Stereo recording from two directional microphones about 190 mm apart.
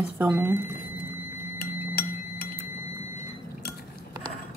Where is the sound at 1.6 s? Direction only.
55° left (ahead or behind).